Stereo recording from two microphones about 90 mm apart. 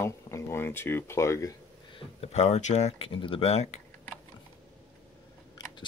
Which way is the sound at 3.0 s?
85° left.